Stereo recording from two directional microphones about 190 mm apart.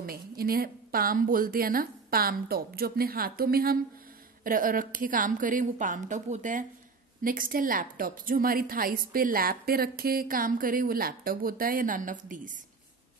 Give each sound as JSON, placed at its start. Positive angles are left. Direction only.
{"t": 0.0, "sound": "a woman's voice", "side_deg": -50}